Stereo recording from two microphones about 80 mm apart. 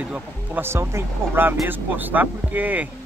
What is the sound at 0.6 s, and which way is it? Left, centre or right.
Speech, right.